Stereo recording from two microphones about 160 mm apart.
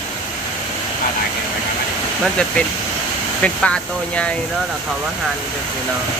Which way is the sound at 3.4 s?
5° left (ahead or behind).